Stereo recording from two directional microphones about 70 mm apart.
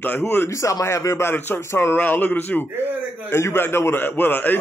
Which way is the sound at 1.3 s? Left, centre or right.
Left.